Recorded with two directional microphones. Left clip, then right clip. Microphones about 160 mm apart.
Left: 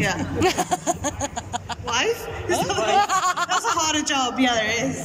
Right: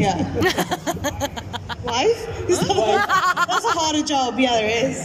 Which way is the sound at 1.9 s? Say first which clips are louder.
Right 3 dB; 25° right (ahead or behind).